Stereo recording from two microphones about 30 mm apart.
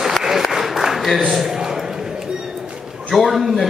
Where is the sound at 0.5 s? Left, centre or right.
Centre.